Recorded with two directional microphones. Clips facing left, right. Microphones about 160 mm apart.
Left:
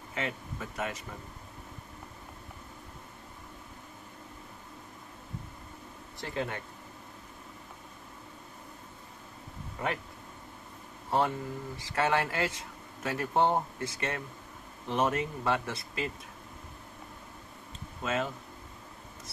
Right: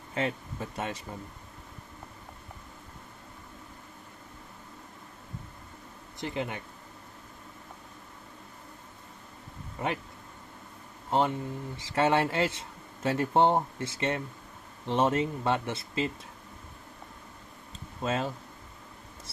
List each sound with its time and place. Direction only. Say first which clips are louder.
0.1 s speech: right 4 dB; 30° right (ahead or behind)
6.1 s speech: right 1 dB; 20° right (ahead or behind)
11.1 s speech: right 2 dB; 20° right (ahead or behind)
18.0 s speech: right 2 dB; 30° right (ahead or behind)